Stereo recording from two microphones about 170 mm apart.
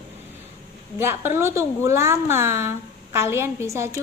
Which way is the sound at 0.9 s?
15° right (ahead or behind).